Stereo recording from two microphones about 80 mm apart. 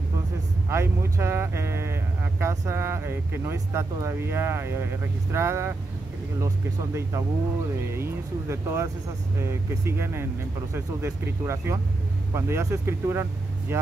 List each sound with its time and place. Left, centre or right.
0.7 s speech: right